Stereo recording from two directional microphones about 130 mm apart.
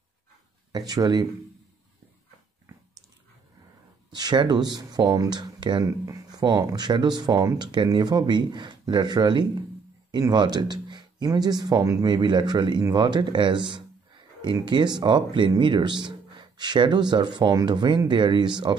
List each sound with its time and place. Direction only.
0.7 s speech: 30° right (ahead or behind)
4.1 s speech: 35° right (ahead or behind)